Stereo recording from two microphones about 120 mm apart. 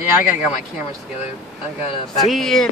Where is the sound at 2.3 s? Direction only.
5° left (ahead or behind).